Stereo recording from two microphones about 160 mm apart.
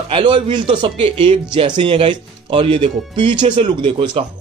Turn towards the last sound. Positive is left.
turn(degrees=-35)  # may be behind; listen again after turning